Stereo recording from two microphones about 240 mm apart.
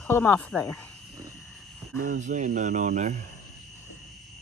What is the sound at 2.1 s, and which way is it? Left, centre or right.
Speech, right.